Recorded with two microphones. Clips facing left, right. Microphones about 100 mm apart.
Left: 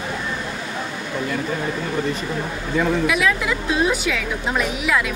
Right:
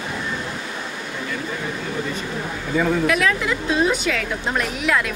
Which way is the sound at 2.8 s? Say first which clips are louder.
Even; 5° left (ahead or behind).